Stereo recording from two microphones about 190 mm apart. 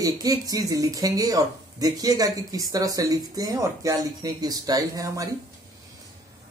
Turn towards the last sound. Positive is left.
turn(degrees=-20)  # may be behind; listen again after turning